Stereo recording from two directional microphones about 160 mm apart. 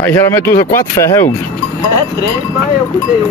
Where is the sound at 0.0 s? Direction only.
15° left (ahead or behind).